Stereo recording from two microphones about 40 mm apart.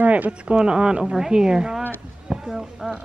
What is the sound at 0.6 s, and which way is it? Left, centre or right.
Speech, right.